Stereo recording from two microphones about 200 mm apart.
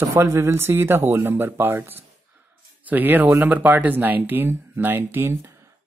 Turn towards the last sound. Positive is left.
turn(degrees=-15)  # may be behind; listen again after turning